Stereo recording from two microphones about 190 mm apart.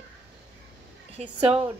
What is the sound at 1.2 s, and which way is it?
Speech, 35° right (ahead or behind).